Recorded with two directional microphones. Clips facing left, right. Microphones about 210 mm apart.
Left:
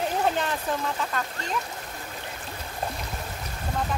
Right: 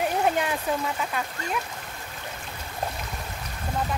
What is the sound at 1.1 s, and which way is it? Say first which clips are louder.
Speech: even; 10° right (ahead or behind).